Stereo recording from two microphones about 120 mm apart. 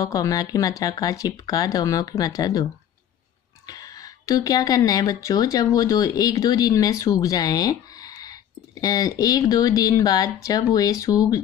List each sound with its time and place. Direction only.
0.0 s speech: 30° left (ahead or behind)